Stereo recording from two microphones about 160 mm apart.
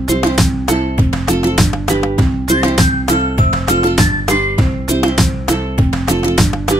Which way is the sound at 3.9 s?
Centre (ahead or behind).